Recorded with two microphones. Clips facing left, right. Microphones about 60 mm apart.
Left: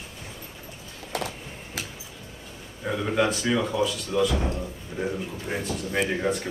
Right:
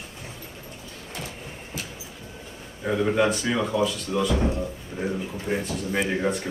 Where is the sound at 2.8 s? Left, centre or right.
Centre.